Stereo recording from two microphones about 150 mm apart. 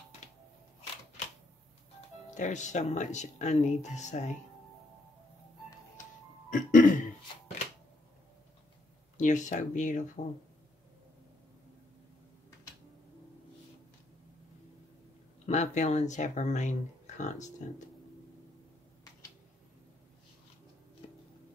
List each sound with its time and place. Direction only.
2.3 s speech: 55° left (ahead or behind)
6.5 s speech: 60° left (ahead or behind)
9.1 s speech: 55° left (ahead or behind)
15.4 s speech: 50° left (ahead or behind)